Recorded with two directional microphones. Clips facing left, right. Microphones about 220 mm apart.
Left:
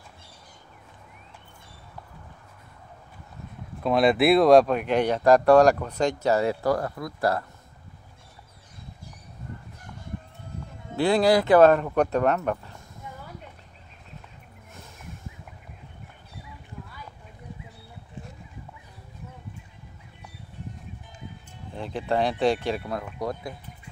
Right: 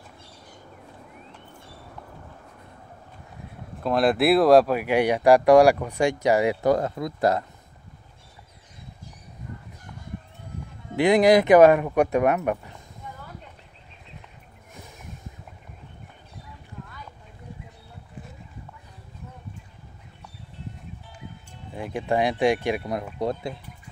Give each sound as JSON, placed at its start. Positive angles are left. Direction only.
{"t": 3.8, "sound": "speech", "side_deg": 0}
{"t": 11.0, "sound": "speech", "side_deg": -15}
{"t": 21.7, "sound": "speech", "side_deg": -15}